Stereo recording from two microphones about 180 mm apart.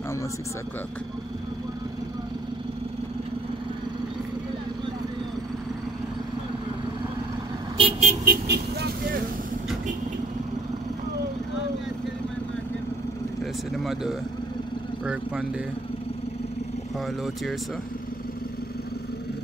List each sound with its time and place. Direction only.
7.7 s vehicle: 35° right (ahead or behind)
8.3 s vehicle: 65° right (ahead or behind)
13.4 s vehicle: centre (ahead or behind)
15.0 s speech: 5° right (ahead or behind)